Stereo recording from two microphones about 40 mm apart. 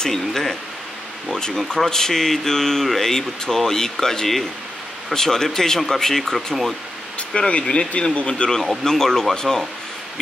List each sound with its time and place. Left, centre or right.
0.0 s speech: centre
6.3 s speech: centre
7.3 s speech: left